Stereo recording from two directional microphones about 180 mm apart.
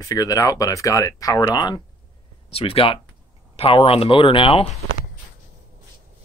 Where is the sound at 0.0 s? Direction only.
20° left (ahead or behind).